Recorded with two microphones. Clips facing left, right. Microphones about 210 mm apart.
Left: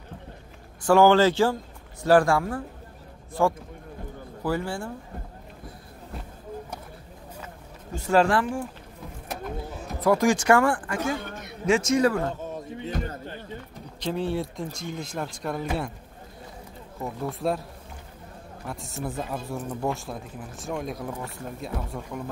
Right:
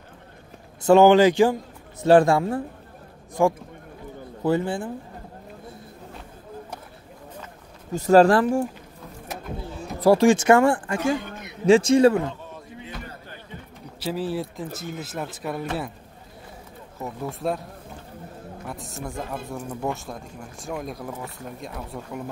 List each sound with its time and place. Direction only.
0.8 s speech: 20° right (ahead or behind)
7.9 s speech: 40° right (ahead or behind)
9.9 s speech: 30° right (ahead or behind)
13.9 s speech: 5° right (ahead or behind)
17.0 s speech: centre (ahead or behind)
18.7 s speech: centre (ahead or behind)